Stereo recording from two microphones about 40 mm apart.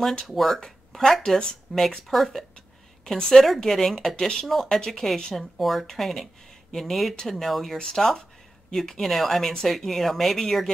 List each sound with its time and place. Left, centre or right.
0.2 s speech: centre
3.2 s speech: centre
3.4 s speech: centre
5.6 s speech: centre